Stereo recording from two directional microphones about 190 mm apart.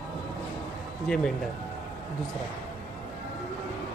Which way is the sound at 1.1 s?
5° left (ahead or behind).